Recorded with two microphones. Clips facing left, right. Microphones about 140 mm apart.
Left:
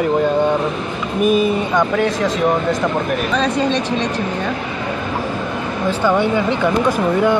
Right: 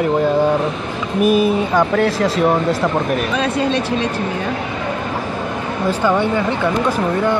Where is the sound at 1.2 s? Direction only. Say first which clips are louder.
Right 1 dB; 5° right (ahead or behind).